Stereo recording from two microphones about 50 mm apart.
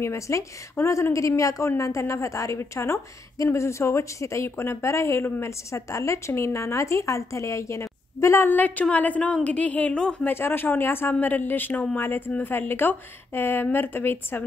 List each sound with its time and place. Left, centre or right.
0.0 s a woman's voice: left
3.4 s speech: left
8.4 s a woman's voice: left
10.2 s speech: left
12.4 s speech: left